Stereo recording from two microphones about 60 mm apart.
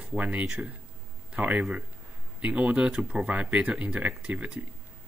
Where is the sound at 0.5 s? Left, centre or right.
Centre.